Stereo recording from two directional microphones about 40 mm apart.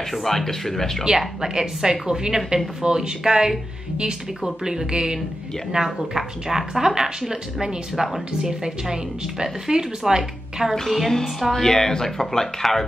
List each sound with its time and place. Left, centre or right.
0.1 s speech: centre
1.4 s a woman's voice: centre
4.6 s a woman's voice: centre
5.7 s speech: right
6.1 s a woman's voice: centre
7.9 s a woman's voice: centre
8.3 s a woman's voice: centre
10.9 s a woman's voice: centre
11.5 s speech: centre